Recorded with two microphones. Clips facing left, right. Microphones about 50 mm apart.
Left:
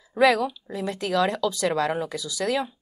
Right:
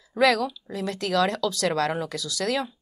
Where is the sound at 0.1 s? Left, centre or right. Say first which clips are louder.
Left 1 dB; centre.